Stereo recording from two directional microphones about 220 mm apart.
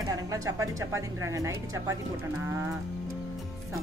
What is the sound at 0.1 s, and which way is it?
A woman's voice, 15° right (ahead or behind).